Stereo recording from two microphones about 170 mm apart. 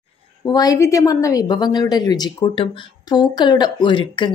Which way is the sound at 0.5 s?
20° left (ahead or behind).